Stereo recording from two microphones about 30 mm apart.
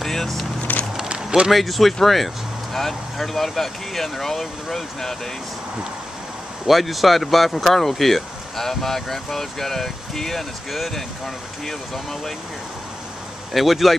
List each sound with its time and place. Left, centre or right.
0.0 s vehicle: centre
0.7 s a sound: left
1.0 s a sound: right
1.5 s speech: centre
6.7 s speech: centre
11.6 s speech: centre
13.5 s speech: centre